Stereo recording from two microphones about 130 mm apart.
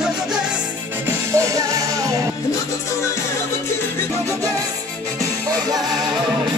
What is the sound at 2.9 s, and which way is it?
Music, 20° left (ahead or behind).